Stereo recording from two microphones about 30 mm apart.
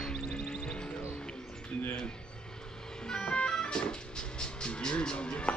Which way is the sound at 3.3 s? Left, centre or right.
Left.